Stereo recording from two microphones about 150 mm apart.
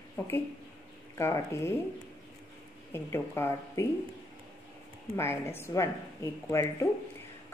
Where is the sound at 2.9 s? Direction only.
15° left (ahead or behind).